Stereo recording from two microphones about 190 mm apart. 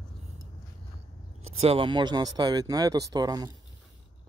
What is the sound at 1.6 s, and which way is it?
Speech, 30° right (ahead or behind).